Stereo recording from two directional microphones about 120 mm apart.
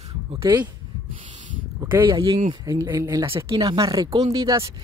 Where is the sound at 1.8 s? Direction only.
25° right (ahead or behind).